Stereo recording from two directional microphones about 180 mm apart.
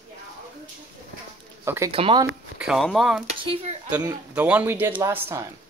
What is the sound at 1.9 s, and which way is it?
Speech, 30° right (ahead or behind).